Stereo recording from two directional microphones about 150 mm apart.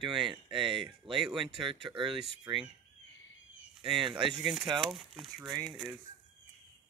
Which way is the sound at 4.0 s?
35° right (ahead or behind).